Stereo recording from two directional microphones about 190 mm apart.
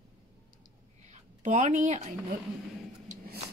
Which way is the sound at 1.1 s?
40° right (ahead or behind).